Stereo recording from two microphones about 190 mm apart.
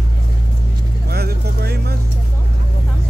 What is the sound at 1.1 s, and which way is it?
Vehicle, 55° right (ahead or behind).